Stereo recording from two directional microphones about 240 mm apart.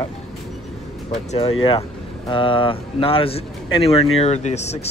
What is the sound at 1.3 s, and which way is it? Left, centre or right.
A man's voice, left.